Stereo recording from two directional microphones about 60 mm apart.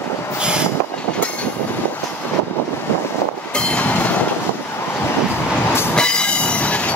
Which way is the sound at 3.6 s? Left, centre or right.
Centre.